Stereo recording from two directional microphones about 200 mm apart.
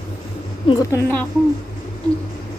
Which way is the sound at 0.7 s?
15° left (ahead or behind).